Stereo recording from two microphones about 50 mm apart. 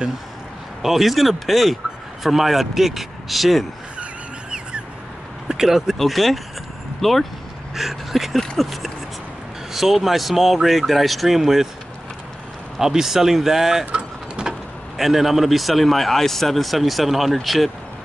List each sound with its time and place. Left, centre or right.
0.8 s speech: centre
4.0 s vehicle: right
5.5 s speech: centre
5.9 s speech: centre
12.7 s speech: centre
13.9 s vehicle: right
15.0 s speech: centre